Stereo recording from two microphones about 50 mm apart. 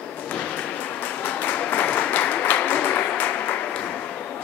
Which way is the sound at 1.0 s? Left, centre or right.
Left.